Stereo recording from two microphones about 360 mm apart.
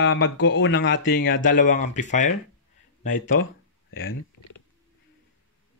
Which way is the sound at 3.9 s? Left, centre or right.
Left.